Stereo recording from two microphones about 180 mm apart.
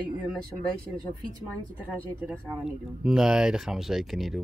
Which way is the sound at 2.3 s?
5° right (ahead or behind).